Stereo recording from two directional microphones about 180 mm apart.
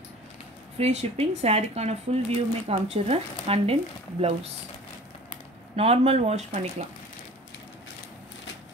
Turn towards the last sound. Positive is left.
turn(degrees=-40)  # may be behind; listen again after turning